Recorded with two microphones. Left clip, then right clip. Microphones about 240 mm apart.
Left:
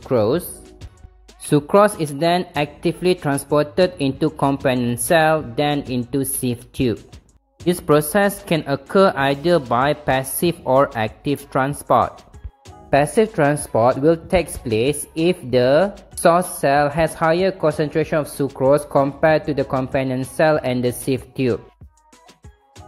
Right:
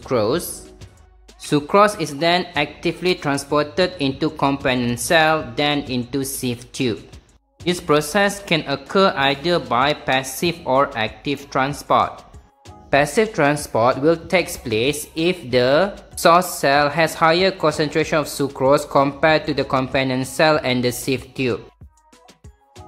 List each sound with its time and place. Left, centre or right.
0.1 s a woman's voice: centre
1.4 s a woman's voice: centre